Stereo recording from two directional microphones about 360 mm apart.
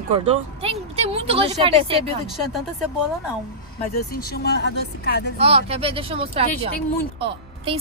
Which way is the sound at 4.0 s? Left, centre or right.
Left.